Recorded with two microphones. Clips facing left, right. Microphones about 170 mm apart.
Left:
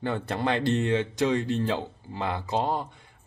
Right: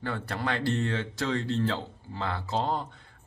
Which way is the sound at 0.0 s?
20° left (ahead or behind).